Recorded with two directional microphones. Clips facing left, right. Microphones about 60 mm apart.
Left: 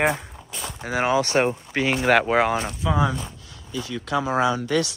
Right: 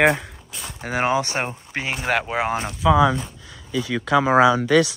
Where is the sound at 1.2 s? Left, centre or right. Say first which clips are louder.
Left 5 dB; centre.